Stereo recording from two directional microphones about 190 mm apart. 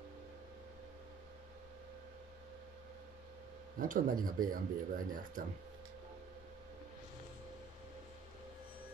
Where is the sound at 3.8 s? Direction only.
45° right (ahead or behind).